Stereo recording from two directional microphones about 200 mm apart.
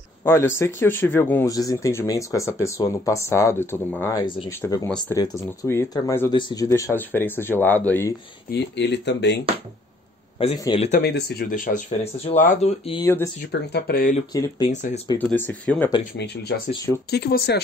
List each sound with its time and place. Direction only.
0.2 s speech: 15° left (ahead or behind)
4.8 s speech: 5° left (ahead or behind)
5.1 s speech: 15° left (ahead or behind)
8.5 s speech: 60° left (ahead or behind)
10.6 s speech: 25° left (ahead or behind)
11.0 s speech: 55° left (ahead or behind); by 13.0 s 30° left (ahead or behind)
13.0 s speech: 15° left (ahead or behind)
13.5 s speech: 55° left (ahead or behind)
14.3 s speech: 20° left (ahead or behind)
17.1 s speech: 55° left (ahead or behind)